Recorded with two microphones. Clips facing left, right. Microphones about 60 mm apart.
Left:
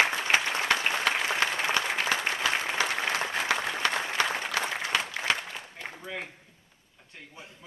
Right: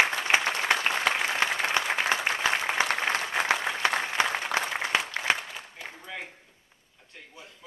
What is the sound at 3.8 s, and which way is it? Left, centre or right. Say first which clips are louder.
Applause: right 2 dB; centre.